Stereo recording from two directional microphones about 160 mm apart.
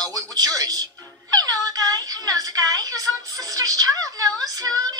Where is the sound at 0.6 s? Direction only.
25° right (ahead or behind).